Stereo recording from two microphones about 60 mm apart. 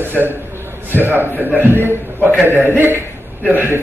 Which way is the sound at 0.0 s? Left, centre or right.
Right.